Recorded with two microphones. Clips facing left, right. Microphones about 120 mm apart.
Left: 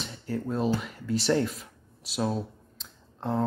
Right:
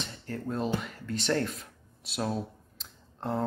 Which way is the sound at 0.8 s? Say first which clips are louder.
Left 4 dB; 5° left (ahead or behind).